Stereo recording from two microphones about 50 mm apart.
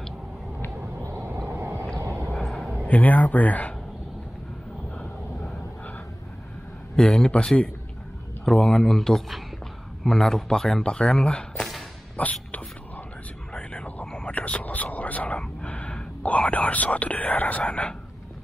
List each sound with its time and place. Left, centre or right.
1.5 s vehicle: right
2.0 s vehicle: right
2.3 s a sound: centre
2.9 s speech: left
7.0 s speech: centre
11.5 s whip: centre
12.2 s whispering: left
13.5 s a sound: left